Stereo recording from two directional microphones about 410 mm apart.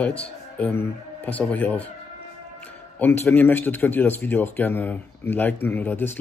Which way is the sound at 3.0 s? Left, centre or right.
Centre.